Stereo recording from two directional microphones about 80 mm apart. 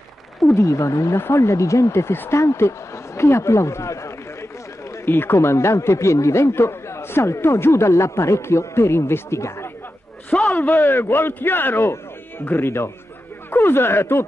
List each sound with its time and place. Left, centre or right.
0.6 s a man's voice: left
5.0 s a man's voice: left
10.3 s a sound: centre
10.7 s a man's voice: left